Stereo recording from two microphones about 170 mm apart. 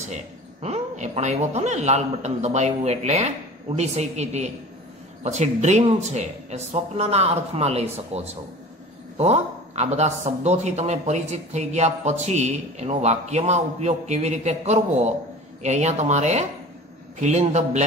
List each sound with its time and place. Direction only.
0.0 s a man's voice: 45° right (ahead or behind)
9.2 s a man's voice: 40° right (ahead or behind)